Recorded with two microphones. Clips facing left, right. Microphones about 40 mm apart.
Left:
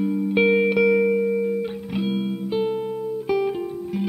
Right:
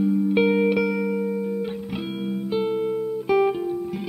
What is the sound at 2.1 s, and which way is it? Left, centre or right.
Music, centre.